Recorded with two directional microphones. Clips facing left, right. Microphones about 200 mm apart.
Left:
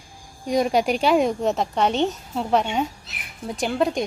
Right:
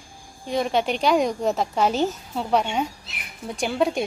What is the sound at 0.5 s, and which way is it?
A woman's voice, 10° left (ahead or behind).